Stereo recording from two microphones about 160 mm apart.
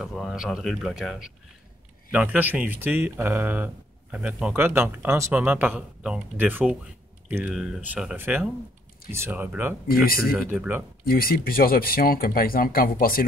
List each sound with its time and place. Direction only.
0.0 s speech: centre (ahead or behind)
11.1 s speech: 70° left (ahead or behind)